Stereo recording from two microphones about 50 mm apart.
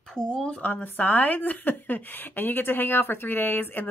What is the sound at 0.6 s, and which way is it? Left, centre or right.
A woman's voice, left.